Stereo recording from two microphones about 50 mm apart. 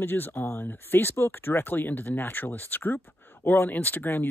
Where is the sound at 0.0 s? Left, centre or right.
Left.